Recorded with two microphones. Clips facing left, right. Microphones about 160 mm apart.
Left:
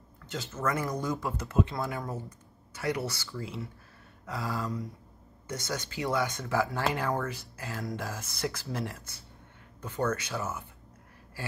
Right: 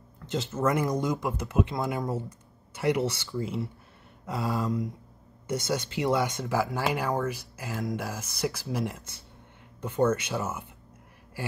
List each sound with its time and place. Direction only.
0.3 s speech: 20° right (ahead or behind)